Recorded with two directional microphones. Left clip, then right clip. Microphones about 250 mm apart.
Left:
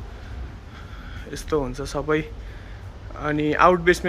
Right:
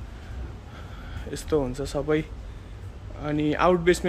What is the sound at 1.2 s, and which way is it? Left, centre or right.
A man's voice, centre.